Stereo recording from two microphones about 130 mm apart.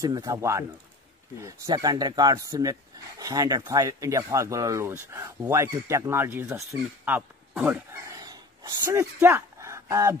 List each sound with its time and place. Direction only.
0.0 s speech: 30° right (ahead or behind); by 8.0 s 10° right (ahead or behind)
8.0 s a sound: 30° right (ahead or behind)
8.8 s speech: 20° right (ahead or behind)